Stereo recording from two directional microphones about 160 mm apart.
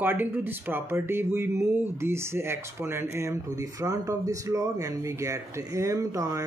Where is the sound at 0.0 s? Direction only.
10° right (ahead or behind).